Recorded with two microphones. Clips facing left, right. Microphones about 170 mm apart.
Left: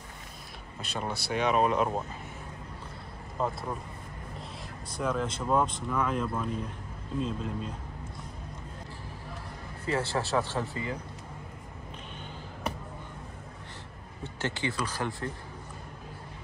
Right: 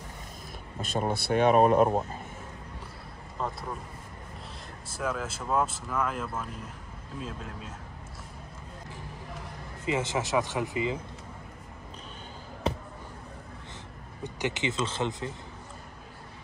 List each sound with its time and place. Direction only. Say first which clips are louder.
0.7 s speech: right 5 dB; 45° right (ahead or behind)
3.4 s speech: left 3 dB; 5° left (ahead or behind)
4.9 s speech: left 2 dB; 5° right (ahead or behind)
9.8 s speech: right 1 dB; 20° right (ahead or behind)
14.2 s speech: right 2 dB; 15° right (ahead or behind)